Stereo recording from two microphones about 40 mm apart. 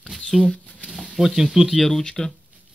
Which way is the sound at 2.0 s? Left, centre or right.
Centre.